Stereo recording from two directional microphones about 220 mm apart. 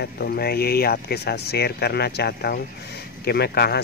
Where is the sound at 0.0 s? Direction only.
45° left (ahead or behind).